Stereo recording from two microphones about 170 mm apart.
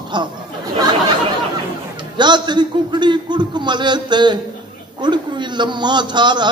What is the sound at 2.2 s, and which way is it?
A man's voice, 25° right (ahead or behind).